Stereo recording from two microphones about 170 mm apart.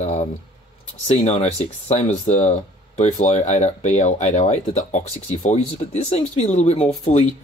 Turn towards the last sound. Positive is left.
turn(degrees=35)  # may be behind; listen again after turning